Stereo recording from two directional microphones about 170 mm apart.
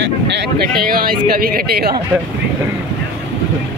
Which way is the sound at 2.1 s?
5° right (ahead or behind).